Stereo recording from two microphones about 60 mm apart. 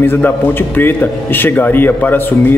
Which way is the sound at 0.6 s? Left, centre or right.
Left.